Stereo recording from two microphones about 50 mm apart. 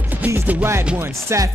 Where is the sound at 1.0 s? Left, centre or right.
Right.